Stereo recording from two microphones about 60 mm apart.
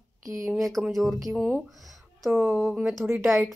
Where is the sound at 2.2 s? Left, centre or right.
Right.